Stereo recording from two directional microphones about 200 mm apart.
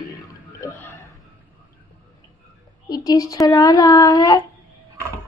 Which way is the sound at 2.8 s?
20° left (ahead or behind).